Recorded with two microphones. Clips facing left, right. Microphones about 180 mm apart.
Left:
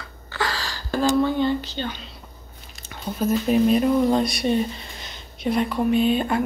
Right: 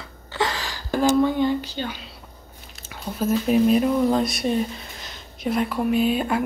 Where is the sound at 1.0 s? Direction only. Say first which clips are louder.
Right 1 dB; 10° right (ahead or behind).